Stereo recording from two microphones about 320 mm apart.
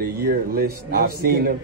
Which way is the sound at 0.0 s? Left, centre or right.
Right.